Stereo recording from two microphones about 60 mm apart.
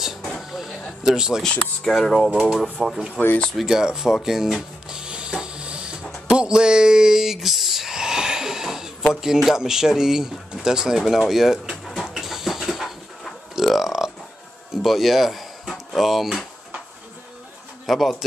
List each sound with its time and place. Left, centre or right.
0.4 s a sound: centre
1.4 s speech: centre
3.2 s speech: centre
3.5 s speech: centre
6.2 s a sound: centre
9.2 s speech: centre
11.8 s dog: centre
14.8 s speech: centre
17.8 s speech: centre